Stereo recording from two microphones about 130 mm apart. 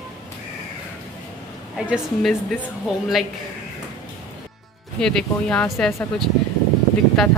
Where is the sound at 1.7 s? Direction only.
5° right (ahead or behind).